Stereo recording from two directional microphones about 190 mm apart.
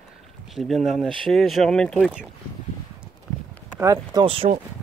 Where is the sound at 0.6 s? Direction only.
Centre (ahead or behind).